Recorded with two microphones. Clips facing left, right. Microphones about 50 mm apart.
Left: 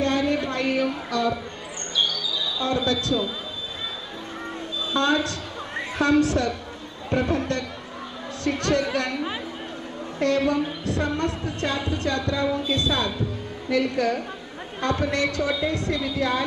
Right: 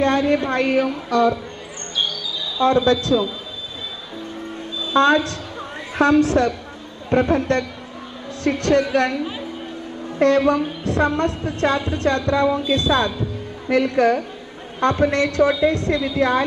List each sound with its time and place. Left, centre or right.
0.0 s a woman's voice: right
2.6 s a woman's voice: right
4.9 s a woman's voice: right
10.1 s a woman's voice: right